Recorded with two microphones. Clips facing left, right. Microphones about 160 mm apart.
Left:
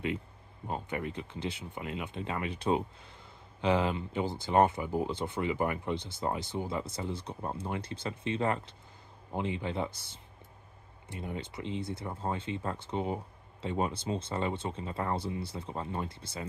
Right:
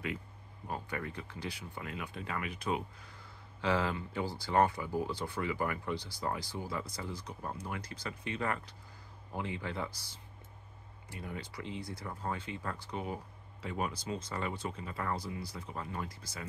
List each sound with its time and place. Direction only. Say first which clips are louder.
0.7 s speech: left 4 dB; 20° left (ahead or behind)